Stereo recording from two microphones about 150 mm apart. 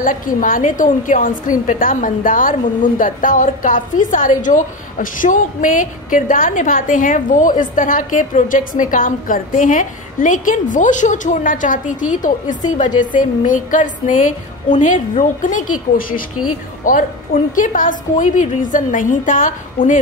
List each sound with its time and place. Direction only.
0.0 s a woman's voice: 65° left (ahead or behind)